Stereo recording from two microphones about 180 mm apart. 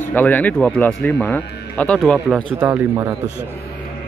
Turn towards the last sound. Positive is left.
turn(degrees=-15)  # may be behind; listen again after turning